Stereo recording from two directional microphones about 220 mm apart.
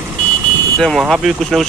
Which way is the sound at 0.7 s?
Centre (ahead or behind).